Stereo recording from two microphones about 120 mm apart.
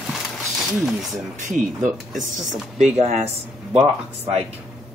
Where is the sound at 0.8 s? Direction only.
Centre (ahead or behind).